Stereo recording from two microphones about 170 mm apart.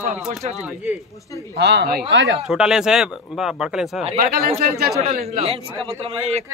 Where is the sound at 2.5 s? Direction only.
5° right (ahead or behind).